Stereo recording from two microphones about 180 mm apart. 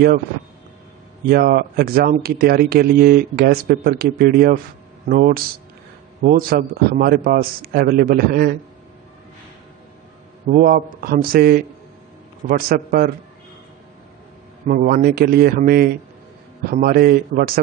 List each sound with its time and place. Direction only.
1.3 s speech: 55° right (ahead or behind)
10.5 s speech: 50° right (ahead or behind)
14.7 s speech: 55° right (ahead or behind)